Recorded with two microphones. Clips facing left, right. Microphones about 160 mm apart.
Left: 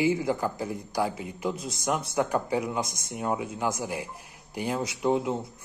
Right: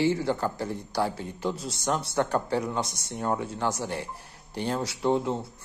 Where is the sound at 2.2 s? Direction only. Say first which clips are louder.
Even; 5° left (ahead or behind).